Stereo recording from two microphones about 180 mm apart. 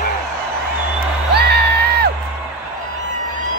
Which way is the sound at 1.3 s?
65° right (ahead or behind).